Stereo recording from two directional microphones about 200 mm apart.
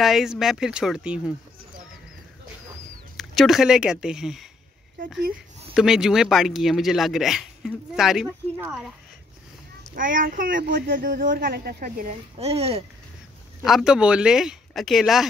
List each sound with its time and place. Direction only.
0.0 s a man's voice: centre (ahead or behind)
3.2 s a man's voice: centre (ahead or behind)
5.8 s a man's voice: centre (ahead or behind)
9.9 s speech: 45° right (ahead or behind)
12.4 s speech: 30° right (ahead or behind)
13.6 s a man's voice: centre (ahead or behind)